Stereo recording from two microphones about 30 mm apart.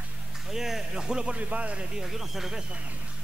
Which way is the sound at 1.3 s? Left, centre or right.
Right.